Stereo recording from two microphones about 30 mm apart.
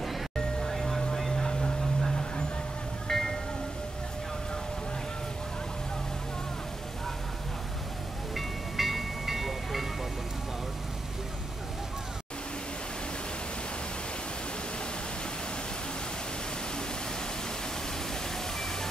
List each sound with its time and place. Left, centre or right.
0.7 s music: centre
1.3 s vehicle: left
3.1 s music: centre
8.4 s music: centre